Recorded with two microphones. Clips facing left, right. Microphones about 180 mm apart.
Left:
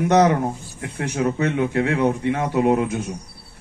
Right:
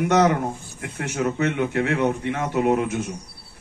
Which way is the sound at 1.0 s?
35° left (ahead or behind).